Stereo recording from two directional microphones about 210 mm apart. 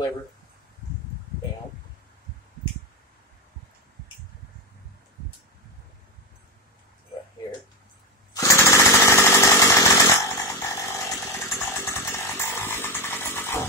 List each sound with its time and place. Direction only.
8.3 s chainsaw: 15° left (ahead or behind)